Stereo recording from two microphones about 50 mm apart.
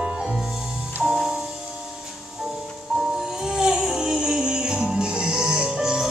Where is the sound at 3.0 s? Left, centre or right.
Centre.